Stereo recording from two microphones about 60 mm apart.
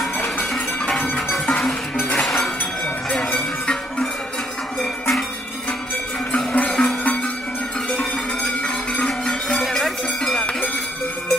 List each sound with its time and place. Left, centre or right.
0.8 s music: centre
2.0 s music: left
2.2 s a sound: centre
6.3 s music: left
6.7 s music: centre
8.6 s music: centre
9.6 s music: centre